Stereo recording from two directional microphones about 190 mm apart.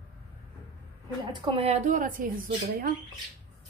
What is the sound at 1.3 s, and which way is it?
Speech, 25° right (ahead or behind).